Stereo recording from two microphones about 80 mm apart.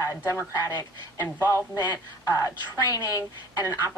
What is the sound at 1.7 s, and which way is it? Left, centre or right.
A woman's voice, left.